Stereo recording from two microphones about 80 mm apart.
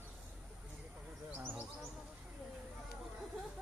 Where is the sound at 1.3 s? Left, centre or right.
Right.